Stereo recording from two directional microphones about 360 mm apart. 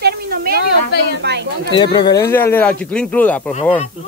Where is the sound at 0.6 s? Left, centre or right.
Left.